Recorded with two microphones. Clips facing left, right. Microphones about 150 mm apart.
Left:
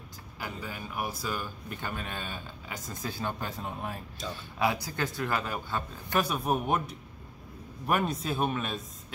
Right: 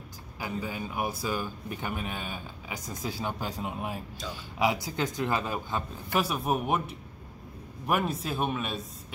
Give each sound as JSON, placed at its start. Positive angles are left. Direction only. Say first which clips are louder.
{"t": 0.4, "sound": "speech", "louder": "right 5 dB", "side_deg": -15}
{"t": 6.1, "sound": "speech", "louder": "even", "side_deg": 0}